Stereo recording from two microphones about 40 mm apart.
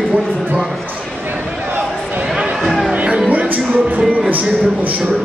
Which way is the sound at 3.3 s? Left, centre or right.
Right.